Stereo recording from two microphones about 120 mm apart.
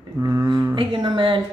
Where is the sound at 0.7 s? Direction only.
45° right (ahead or behind).